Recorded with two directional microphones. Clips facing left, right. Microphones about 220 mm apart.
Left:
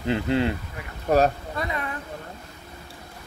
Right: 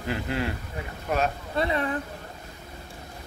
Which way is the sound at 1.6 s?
30° right (ahead or behind).